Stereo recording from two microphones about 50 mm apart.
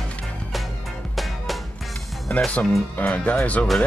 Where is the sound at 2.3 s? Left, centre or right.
Left.